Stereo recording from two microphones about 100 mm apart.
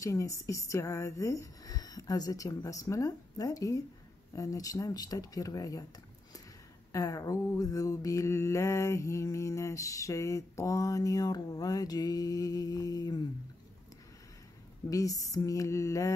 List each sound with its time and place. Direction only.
0.0 s mantra: 30° left (ahead or behind)
6.9 s mantra: 35° left (ahead or behind)
14.9 s mantra: 35° left (ahead or behind)